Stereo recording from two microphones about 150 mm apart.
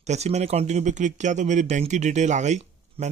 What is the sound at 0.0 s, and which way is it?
Speech, 50° right (ahead or behind).